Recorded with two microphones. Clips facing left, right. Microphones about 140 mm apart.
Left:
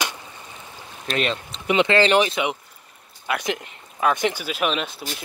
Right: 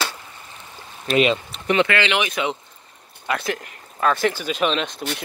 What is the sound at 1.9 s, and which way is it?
Speech, 35° left (ahead or behind).